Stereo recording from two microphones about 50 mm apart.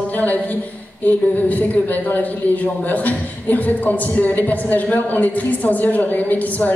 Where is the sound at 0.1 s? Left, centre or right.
Left.